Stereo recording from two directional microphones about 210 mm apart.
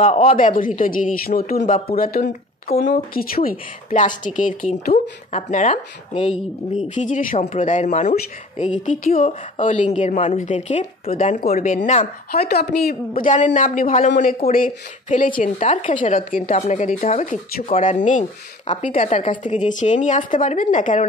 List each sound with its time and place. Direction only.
0.0 s speech: 30° left (ahead or behind)
0.6 s speech: 40° left (ahead or behind)
6.3 s speech: centre (ahead or behind)
6.9 s speech: 35° left (ahead or behind)
12.3 s speech: 50° left (ahead or behind)
13.2 s speech: 35° left (ahead or behind)